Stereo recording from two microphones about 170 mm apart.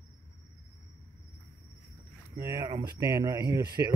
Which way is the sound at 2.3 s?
20° right (ahead or behind).